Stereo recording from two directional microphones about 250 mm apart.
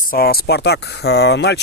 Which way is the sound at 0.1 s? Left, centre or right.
Left.